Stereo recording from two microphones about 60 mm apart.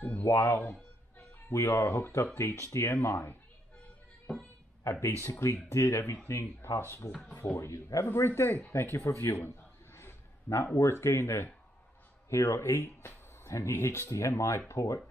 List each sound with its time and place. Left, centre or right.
0.2 s speech: left
2.3 s speech: left
5.0 s speech: left
8.1 s speech: left
9.9 s a sound: left
10.8 s speech: left